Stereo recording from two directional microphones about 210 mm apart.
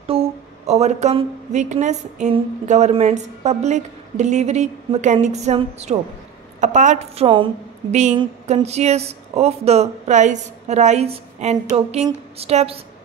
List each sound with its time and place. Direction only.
0.0 s a woman's voice: 30° right (ahead or behind)